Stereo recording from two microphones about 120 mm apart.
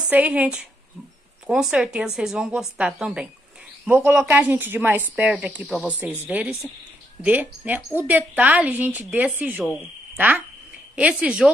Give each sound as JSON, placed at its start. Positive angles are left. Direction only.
{"t": 0.1, "sound": "a woman's voice", "side_deg": -10}
{"t": 5.7, "sound": "speech", "side_deg": 10}
{"t": 6.2, "sound": "a woman's voice", "side_deg": -15}